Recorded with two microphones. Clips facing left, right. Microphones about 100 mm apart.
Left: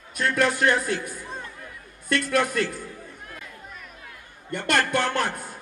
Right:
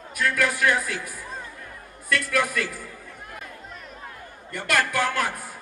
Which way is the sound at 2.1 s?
30° left (ahead or behind).